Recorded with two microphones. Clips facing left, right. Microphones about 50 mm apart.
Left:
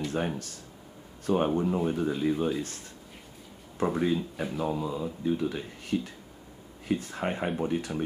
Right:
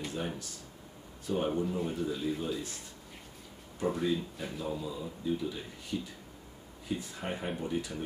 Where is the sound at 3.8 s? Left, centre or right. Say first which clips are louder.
Left 4 dB; left.